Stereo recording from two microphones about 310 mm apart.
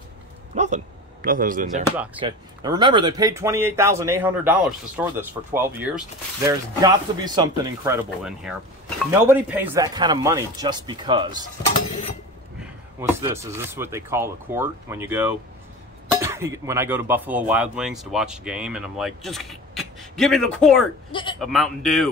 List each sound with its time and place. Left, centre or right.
0.6 s a man's voice: right
1.9 s speech: centre
13.1 s speech: centre
21.1 s speech: centre
21.4 s speech: centre